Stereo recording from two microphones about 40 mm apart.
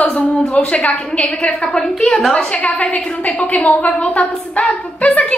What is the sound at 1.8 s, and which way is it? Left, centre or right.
Speech, centre.